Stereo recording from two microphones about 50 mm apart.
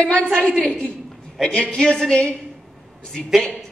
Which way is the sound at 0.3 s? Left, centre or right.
Centre.